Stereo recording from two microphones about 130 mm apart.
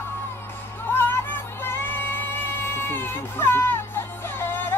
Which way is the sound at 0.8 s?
15° left (ahead or behind).